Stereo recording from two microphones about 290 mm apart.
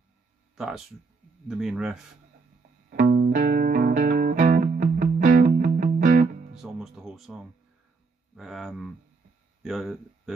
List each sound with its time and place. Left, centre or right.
0.6 s speech: centre
2.9 s music: right
6.6 s speech: centre